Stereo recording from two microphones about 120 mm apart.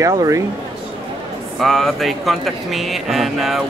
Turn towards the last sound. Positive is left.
turn(degrees=0)  # may be behind; listen again after turning